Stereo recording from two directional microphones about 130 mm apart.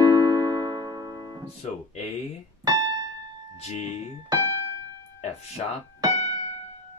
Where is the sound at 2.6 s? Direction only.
30° right (ahead or behind).